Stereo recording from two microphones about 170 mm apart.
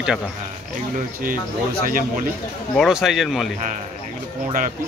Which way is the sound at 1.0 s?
55° right (ahead or behind).